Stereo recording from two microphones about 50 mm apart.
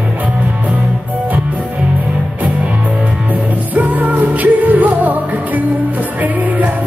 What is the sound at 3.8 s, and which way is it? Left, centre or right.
Music, right.